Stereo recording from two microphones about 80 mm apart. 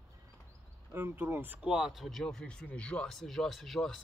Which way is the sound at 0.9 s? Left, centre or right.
Right.